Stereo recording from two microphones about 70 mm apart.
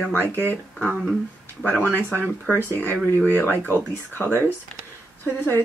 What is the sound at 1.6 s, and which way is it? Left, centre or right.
Speech, left.